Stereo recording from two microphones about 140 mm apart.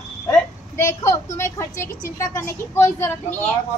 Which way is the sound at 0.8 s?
20° left (ahead or behind).